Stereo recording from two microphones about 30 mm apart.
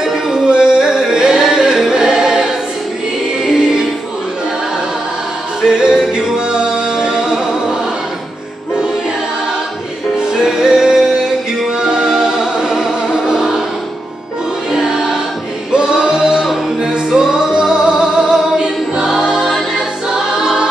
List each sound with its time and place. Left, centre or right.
0.0 s music: centre
5.7 s music: right
10.3 s music: centre
14.9 s music: right
17.1 s music: centre
17.6 s choir: centre